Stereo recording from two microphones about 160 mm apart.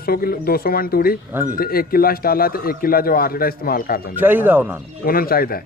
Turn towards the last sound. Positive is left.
turn(degrees=70)  # may be behind; listen again after turning